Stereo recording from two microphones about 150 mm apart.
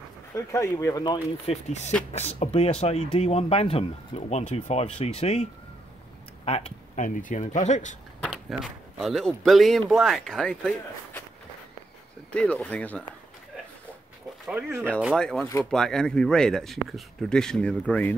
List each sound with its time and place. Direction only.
0.3 s speech: 20° left (ahead or behind)
1.4 s speech: 45° left (ahead or behind)
7.0 s speech: 60° left (ahead or behind)
8.2 s speech: centre (ahead or behind)
12.3 s speech: 10° left (ahead or behind)
14.5 s speech: 10° right (ahead or behind)
15.1 s speech: 5° left (ahead or behind)